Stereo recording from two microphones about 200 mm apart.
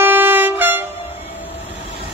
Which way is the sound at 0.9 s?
30° left (ahead or behind).